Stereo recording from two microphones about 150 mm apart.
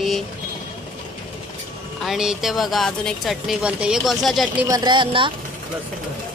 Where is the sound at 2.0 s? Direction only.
5° right (ahead or behind).